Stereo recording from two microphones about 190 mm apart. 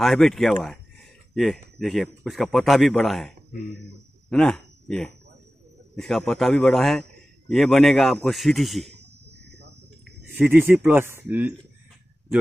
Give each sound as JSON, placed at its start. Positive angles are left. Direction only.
{"t": 0.0, "sound": "a man's voice", "side_deg": 0}
{"t": 8.9, "sound": "cricket", "side_deg": -60}
{"t": 10.3, "sound": "speech", "side_deg": -10}